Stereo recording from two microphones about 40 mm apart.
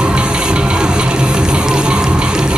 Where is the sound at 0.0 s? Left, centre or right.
Right.